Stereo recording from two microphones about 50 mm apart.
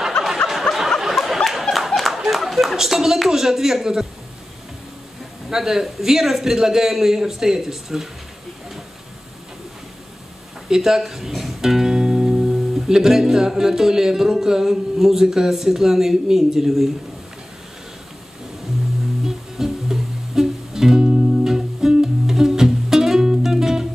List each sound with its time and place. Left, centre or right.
0.7 s a sound: left
1.0 s a sound: centre
2.1 s a man's voice: centre
5.5 s a man's voice: centre
10.7 s speech: centre
19.2 s music: centre